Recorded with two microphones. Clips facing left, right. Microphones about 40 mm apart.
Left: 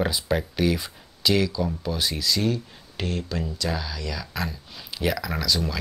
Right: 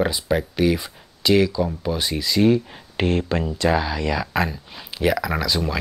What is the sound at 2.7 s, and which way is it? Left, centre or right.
Speech, right.